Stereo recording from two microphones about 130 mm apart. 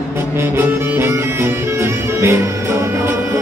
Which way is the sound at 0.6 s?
20° right (ahead or behind).